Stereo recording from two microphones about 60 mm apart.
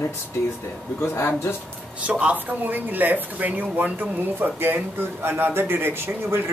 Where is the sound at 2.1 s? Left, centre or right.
Right.